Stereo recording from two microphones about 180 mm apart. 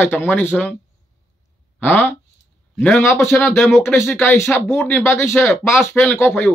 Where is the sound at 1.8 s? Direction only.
10° left (ahead or behind).